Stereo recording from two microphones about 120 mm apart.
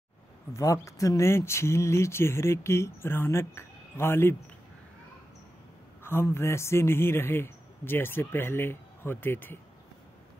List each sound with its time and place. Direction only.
0.5 s speech: 25° left (ahead or behind)
6.0 s speech: 20° left (ahead or behind)